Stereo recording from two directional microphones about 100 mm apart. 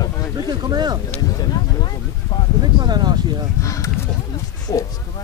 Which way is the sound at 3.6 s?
30° left (ahead or behind).